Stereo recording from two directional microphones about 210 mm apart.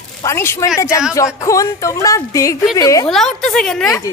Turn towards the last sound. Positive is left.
turn(degrees=15)  # may be behind; listen again after turning